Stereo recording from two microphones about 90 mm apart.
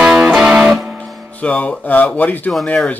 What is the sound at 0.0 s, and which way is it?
Music, 10° right (ahead or behind).